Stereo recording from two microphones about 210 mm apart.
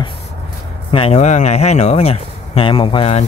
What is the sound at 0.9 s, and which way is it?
Speech, 30° left (ahead or behind).